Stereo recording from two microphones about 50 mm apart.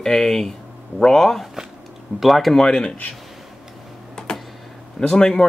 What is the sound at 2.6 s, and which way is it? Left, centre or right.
Speech, centre.